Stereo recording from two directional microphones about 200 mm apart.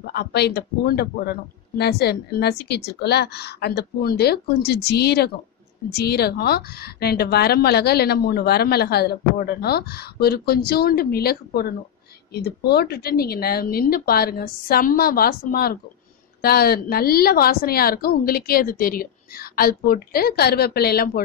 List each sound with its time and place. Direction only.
0.0 s a woman's voice: 55° left (ahead or behind)